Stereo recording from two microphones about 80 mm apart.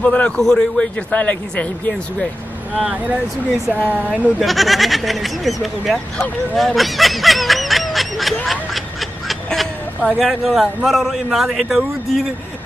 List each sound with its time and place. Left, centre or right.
0.0 s a man's voice: centre
1.1 s speech: centre
3.8 s speech: centre
4.4 s a man's voice: centre
6.5 s snicker: centre
9.3 s a sound: centre
10.0 s a man's voice: centre